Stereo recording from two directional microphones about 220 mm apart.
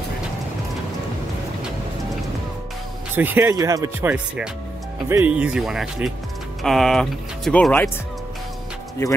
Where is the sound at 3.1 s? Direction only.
10° right (ahead or behind); by 7.9 s 5° left (ahead or behind).